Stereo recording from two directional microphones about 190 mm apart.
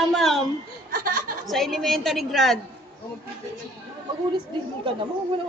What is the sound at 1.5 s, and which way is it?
A woman's voice, centre (ahead or behind).